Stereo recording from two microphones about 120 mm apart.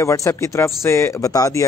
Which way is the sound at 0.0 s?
25° left (ahead or behind).